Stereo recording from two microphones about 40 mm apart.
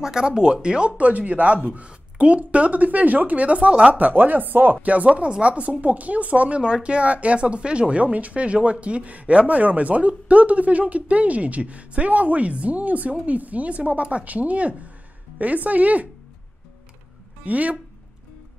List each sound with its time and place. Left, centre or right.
0.0 s speech: centre; by 4.7 s right
4.8 s speech: right
6.6 s speech: right
17.5 s speech: right